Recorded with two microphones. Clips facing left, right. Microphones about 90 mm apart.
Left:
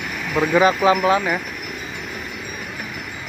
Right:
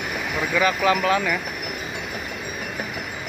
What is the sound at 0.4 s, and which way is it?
Speech, 30° left (ahead or behind).